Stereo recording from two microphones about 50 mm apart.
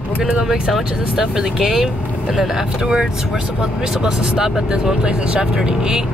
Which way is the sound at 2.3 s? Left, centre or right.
Centre.